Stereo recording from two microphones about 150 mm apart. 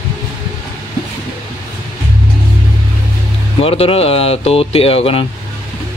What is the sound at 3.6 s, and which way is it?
Speech, 40° left (ahead or behind).